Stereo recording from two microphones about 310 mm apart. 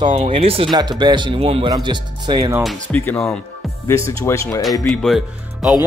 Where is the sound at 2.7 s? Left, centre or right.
Centre.